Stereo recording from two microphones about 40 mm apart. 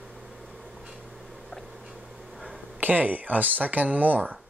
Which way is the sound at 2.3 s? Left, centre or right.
Centre.